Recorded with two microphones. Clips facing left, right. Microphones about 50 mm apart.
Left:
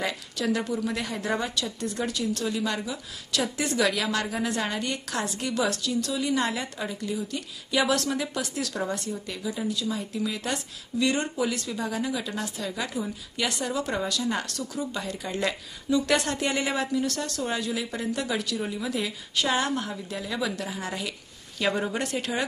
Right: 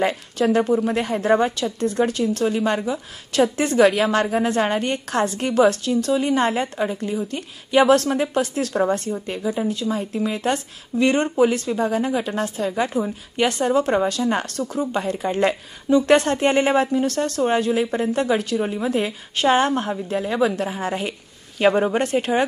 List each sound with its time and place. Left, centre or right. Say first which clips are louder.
0.0 s a woman's voice: right 9 dB; right